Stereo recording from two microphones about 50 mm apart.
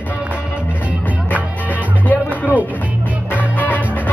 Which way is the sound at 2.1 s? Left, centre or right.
Left.